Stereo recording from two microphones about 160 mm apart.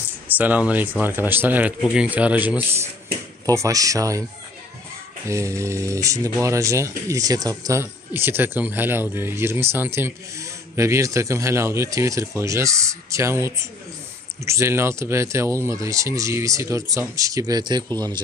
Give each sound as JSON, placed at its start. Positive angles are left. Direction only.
{"t": 0.3, "sound": "speech", "side_deg": -10}
{"t": 3.4, "sound": "speech", "side_deg": -20}
{"t": 5.3, "sound": "speech", "side_deg": -20}